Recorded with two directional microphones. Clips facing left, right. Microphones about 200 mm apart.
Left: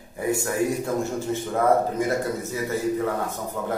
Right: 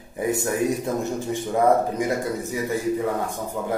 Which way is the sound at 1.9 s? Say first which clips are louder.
Even; 15° right (ahead or behind).